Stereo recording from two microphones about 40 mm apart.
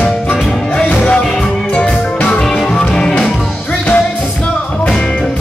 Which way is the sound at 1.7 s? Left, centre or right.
Left.